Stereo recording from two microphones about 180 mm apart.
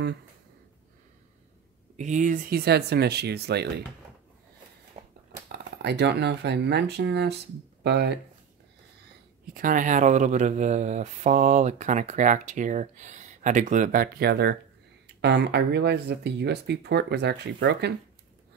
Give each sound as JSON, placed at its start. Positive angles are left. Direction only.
{"t": 2.0, "sound": "speech", "side_deg": -45}
{"t": 5.0, "sound": "a sound", "side_deg": -40}
{"t": 5.3, "sound": "speech", "side_deg": -70}
{"t": 9.5, "sound": "speech", "side_deg": -50}